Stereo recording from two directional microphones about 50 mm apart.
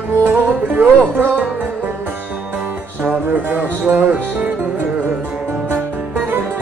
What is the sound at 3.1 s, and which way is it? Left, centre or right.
Music, right.